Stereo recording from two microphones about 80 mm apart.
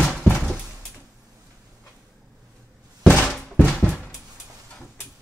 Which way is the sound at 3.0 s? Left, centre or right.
Centre.